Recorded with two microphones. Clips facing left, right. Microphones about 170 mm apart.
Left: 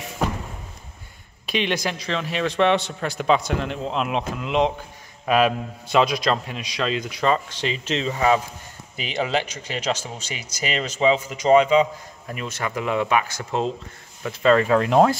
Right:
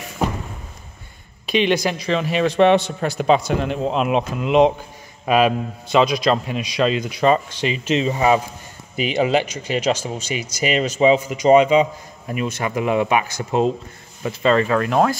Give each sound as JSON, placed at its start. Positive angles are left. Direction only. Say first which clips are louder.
{"t": 1.4, "sound": "speech", "louder": "right 6 dB", "side_deg": 0}
{"t": 2.5, "sound": "a man's voice", "louder": "right 5 dB", "side_deg": -45}
{"t": 3.2, "sound": "a man's voice", "louder": "right 3 dB", "side_deg": -30}
{"t": 3.4, "sound": "speech", "louder": "right 5 dB", "side_deg": -10}
{"t": 14.4, "sound": "speech", "louder": "even", "side_deg": 5}
{"t": 14.8, "sound": "speech", "louder": "left 1 dB", "side_deg": 20}